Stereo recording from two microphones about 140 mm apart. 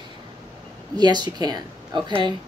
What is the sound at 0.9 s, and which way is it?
Speech, 30° right (ahead or behind).